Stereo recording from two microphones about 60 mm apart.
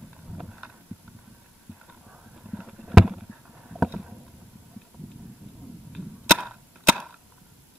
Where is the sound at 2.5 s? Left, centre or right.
Centre.